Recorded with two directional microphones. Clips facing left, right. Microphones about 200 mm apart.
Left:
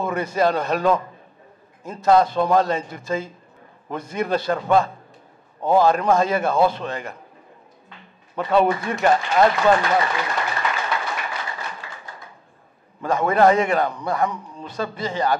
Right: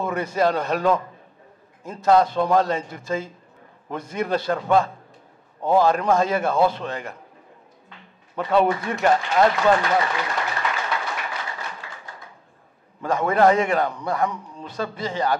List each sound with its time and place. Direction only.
0.0 s a man's voice: 15° left (ahead or behind)
8.4 s a sound: 10° left (ahead or behind)
13.0 s a man's voice: 20° left (ahead or behind)
13.4 s a man's voice: 10° left (ahead or behind)
13.9 s speech: 20° left (ahead or behind)
14.8 s a man's voice: 10° left (ahead or behind)